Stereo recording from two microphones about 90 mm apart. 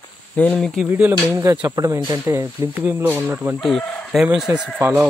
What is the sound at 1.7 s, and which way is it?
Speech, 40° right (ahead or behind).